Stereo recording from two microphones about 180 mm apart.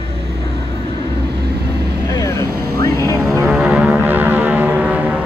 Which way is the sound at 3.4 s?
5° right (ahead or behind).